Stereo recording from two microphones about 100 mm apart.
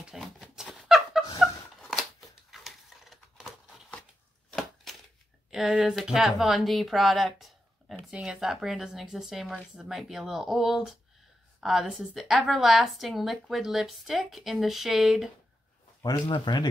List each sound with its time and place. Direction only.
0.0 s a sound: centre (ahead or behind)
5.5 s a woman's voice: 5° right (ahead or behind)
16.3 s speech: 50° left (ahead or behind)